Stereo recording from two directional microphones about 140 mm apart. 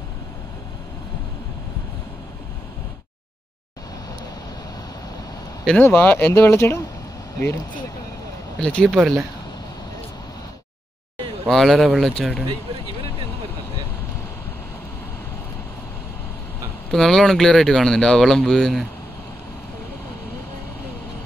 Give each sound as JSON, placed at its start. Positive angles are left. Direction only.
{"t": 5.7, "sound": "speech", "side_deg": 15}
{"t": 8.6, "sound": "speech", "side_deg": 10}
{"t": 11.4, "sound": "speech", "side_deg": 0}
{"t": 16.9, "sound": "speech", "side_deg": 5}